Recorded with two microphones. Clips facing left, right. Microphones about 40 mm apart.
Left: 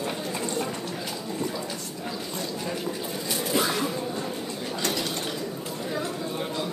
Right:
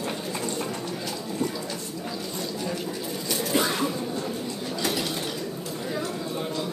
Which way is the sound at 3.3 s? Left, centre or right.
Centre.